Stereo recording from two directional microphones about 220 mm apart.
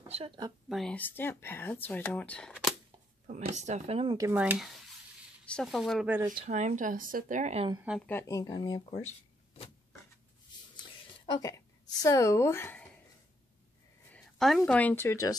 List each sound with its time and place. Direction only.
0.1 s speech: 25° right (ahead or behind)
0.7 s speech: centre (ahead or behind)
3.3 s speech: 35° right (ahead or behind); by 6.3 s 10° right (ahead or behind)
6.3 s speech: 30° right (ahead or behind)
7.7 s speech: 5° right (ahead or behind)
8.1 s speech: 10° left (ahead or behind)
11.3 s a woman's voice: 15° left (ahead or behind)
14.1 s a woman's voice: centre (ahead or behind)